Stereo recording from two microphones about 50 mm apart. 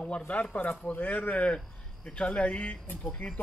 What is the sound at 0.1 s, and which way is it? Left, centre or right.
Speech, left.